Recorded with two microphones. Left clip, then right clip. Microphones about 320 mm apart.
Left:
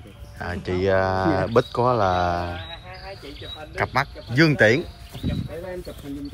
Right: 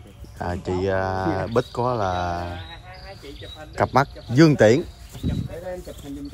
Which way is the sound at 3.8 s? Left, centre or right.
Centre.